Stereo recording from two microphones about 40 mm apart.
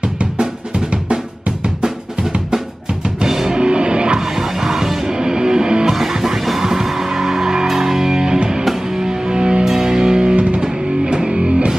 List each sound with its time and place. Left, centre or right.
0.2 s drum: right
3.3 s music: centre
3.5 s music: right
4.4 s music: centre
5.9 s music: centre
10.3 s music: right
10.6 s music: centre